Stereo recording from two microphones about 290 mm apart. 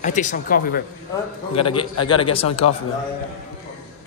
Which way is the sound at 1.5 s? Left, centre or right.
Centre.